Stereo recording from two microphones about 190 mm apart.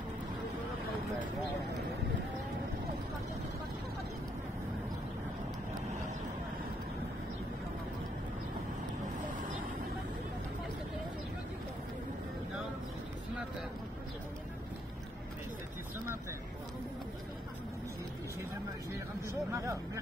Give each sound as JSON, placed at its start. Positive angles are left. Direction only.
{"t": 19.2, "sound": "vehicle", "side_deg": -15}